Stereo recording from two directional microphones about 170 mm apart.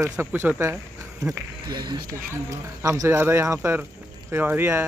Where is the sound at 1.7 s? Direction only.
25° right (ahead or behind).